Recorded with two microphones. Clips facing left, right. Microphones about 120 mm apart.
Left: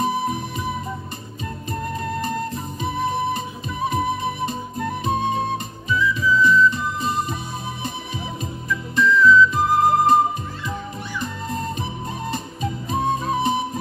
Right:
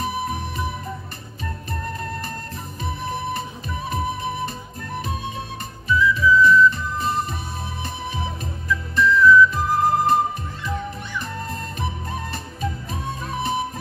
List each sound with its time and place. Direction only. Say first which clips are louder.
2.8 s music: left 5 dB; 20° left (ahead or behind)
12.9 s music: left 7 dB; 20° left (ahead or behind)